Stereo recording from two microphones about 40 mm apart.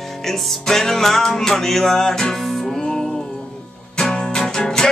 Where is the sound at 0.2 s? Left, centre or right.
Centre.